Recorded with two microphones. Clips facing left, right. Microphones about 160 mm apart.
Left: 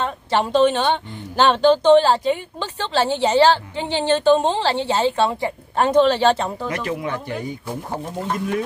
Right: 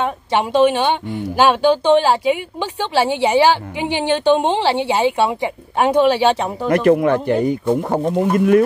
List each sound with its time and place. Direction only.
0.0 s speech: 10° right (ahead or behind)
6.7 s speech: 55° right (ahead or behind)